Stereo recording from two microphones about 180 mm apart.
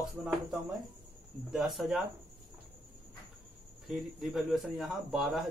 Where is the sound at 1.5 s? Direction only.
Centre (ahead or behind).